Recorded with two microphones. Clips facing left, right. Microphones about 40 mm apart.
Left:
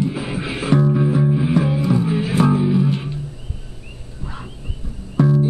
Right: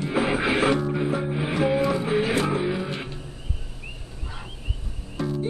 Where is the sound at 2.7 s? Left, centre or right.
Centre.